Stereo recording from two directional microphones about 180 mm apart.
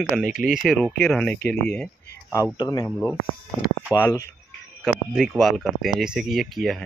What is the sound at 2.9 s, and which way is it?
Speech, 5° left (ahead or behind).